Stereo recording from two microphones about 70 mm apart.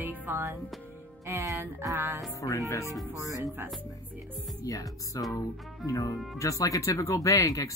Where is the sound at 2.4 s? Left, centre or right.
Left.